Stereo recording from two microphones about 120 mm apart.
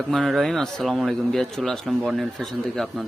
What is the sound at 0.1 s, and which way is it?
Speech, centre (ahead or behind).